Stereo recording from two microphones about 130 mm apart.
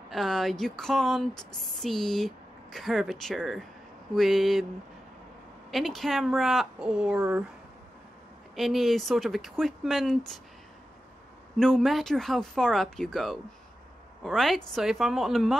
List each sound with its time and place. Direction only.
0.1 s speech: centre (ahead or behind)
5.7 s speech: centre (ahead or behind)
8.5 s speech: centre (ahead or behind)
11.5 s speech: 5° left (ahead or behind)